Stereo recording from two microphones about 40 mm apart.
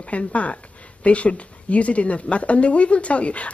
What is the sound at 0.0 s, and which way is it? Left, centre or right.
Speech, left.